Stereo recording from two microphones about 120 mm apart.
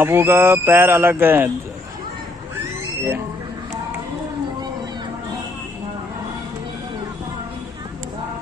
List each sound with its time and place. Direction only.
0.0 s speech: 20° right (ahead or behind)